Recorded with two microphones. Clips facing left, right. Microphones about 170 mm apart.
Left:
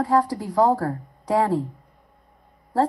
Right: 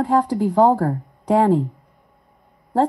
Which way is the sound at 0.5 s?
25° right (ahead or behind).